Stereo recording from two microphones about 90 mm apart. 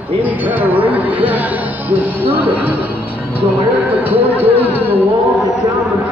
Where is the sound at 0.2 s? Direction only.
20° right (ahead or behind).